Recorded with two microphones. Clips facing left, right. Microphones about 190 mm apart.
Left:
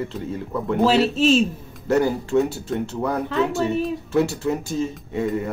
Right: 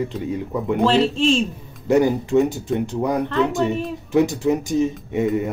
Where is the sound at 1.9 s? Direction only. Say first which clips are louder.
Right 3 dB; 15° right (ahead or behind).